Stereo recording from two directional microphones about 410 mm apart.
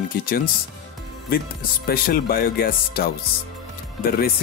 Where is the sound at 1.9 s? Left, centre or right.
Left.